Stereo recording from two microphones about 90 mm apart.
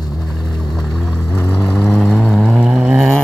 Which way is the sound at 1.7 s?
5° left (ahead or behind).